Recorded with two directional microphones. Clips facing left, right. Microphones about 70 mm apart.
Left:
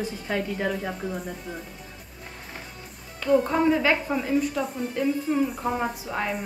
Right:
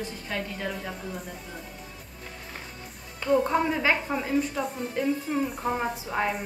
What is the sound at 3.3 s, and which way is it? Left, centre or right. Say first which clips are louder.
A woman's voice: left 3 dB; centre.